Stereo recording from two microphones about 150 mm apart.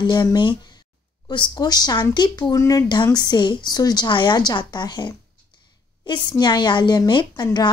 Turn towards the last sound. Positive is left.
turn(degrees=30)  # may be behind; listen again after turning